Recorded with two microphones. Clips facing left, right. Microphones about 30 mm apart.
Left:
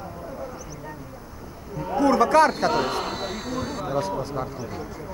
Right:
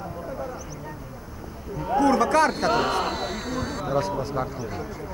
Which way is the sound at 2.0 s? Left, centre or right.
Centre.